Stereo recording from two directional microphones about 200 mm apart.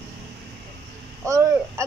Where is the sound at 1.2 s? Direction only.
15° right (ahead or behind).